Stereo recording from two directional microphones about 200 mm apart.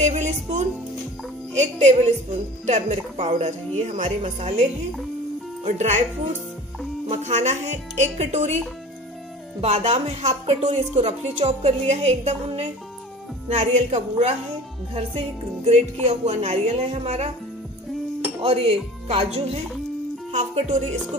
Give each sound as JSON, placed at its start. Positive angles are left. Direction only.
{"t": 0.0, "sound": "a woman's voice", "side_deg": -35}
{"t": 7.1, "sound": "a woman's voice", "side_deg": -35}
{"t": 9.6, "sound": "a woman's voice", "side_deg": -30}
{"t": 18.4, "sound": "speech", "side_deg": -30}